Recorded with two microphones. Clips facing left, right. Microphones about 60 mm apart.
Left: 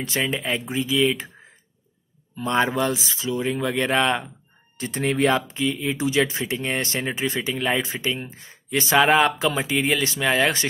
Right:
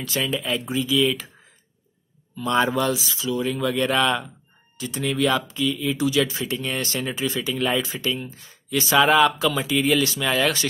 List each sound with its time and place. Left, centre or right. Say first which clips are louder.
0.0 s speech: left 1 dB; left
2.3 s speech: right 1 dB; left
4.7 s speech: left 2 dB; left